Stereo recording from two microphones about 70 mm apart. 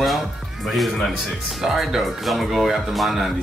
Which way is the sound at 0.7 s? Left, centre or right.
Centre.